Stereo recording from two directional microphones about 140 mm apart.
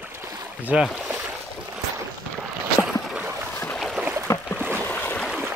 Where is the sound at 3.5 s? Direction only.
15° left (ahead or behind).